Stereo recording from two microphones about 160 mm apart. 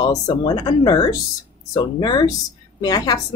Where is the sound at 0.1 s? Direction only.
25° left (ahead or behind).